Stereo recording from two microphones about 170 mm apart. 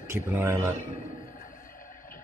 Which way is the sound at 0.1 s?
10° right (ahead or behind).